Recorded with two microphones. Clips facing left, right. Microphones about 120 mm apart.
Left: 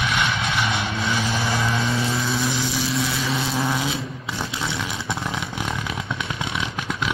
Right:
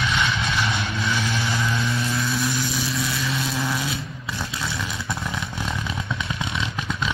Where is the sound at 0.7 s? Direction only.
25° left (ahead or behind).